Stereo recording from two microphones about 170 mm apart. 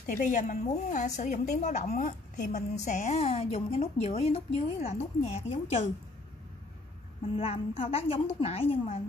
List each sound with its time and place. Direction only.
0.0 s a woman's voice: 50° left (ahead or behind); by 5.9 s 35° left (ahead or behind)
7.3 s a woman's voice: 35° left (ahead or behind)